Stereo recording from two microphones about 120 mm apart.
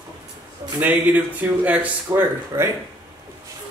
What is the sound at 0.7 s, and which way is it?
Speech, 15° right (ahead or behind).